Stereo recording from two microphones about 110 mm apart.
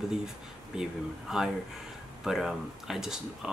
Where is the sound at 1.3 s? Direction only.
5° right (ahead or behind).